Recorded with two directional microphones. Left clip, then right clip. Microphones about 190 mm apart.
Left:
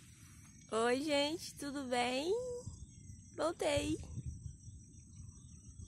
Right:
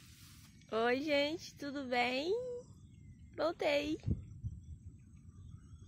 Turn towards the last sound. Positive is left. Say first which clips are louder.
# right 2 dB
turn(degrees=5)  # may be behind; listen again after turning